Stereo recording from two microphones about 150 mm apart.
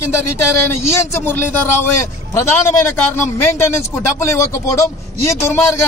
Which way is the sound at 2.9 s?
15° left (ahead or behind).